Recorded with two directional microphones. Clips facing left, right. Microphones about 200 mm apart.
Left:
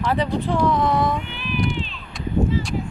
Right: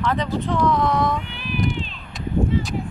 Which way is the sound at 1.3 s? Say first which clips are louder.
Even; 40° right (ahead or behind).